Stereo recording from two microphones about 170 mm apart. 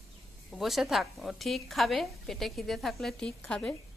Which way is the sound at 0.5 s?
Centre (ahead or behind).